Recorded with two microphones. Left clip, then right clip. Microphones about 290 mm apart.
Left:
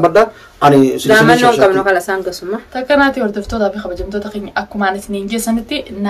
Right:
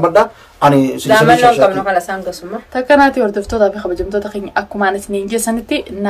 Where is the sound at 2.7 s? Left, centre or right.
Centre.